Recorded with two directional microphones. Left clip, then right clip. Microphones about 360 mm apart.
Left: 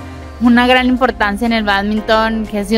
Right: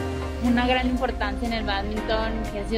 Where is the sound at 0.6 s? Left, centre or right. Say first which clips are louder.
Left 12 dB; left.